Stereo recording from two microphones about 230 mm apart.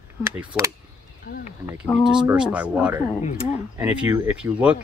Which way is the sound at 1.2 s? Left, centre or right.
Left.